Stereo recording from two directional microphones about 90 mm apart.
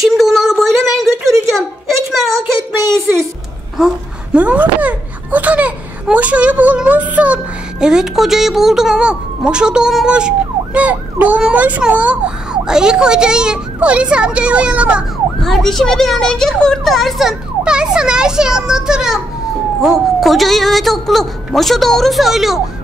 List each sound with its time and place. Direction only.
0.0 s a sound: centre (ahead or behind)
3.7 s babbling: 10° right (ahead or behind)
7.8 s a woman's voice: 5° right (ahead or behind)
15.4 s speech: centre (ahead or behind)